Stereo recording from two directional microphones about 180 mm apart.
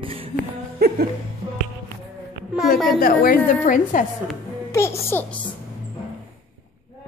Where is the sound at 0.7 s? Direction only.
55° right (ahead or behind).